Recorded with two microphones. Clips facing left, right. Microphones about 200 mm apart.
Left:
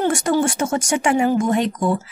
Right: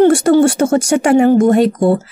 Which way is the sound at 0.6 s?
35° right (ahead or behind).